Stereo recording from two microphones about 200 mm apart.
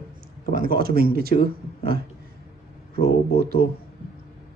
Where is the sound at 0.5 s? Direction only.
50° right (ahead or behind).